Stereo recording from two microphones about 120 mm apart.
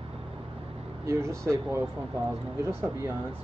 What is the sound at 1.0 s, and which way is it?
Speech, 25° right (ahead or behind).